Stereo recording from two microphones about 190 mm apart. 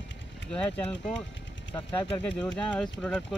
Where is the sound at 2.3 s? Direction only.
5° left (ahead or behind).